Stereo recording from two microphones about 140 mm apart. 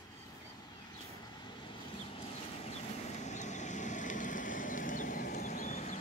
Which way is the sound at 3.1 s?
55° left (ahead or behind).